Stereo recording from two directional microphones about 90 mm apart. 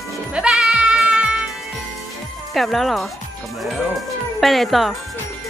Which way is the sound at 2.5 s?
Centre (ahead or behind).